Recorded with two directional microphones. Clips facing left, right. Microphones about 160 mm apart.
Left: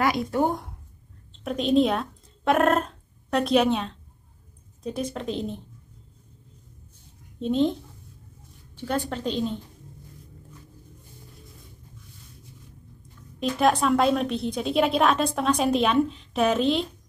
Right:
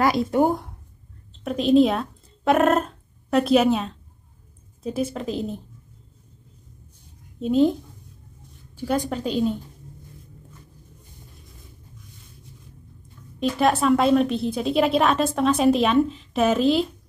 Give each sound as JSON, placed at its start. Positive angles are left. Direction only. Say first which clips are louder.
{"t": 0.3, "sound": "speech", "louder": "right 4 dB", "side_deg": -20}
{"t": 1.4, "sound": "a woman's voice", "louder": "right 4 dB", "side_deg": 0}
{"t": 7.3, "sound": "a woman's voice", "louder": "right 4 dB", "side_deg": -5}
{"t": 8.7, "sound": "a woman's voice", "louder": "right 4 dB", "side_deg": -10}
{"t": 13.4, "sound": "a woman's voice", "louder": "right 1 dB", "side_deg": 0}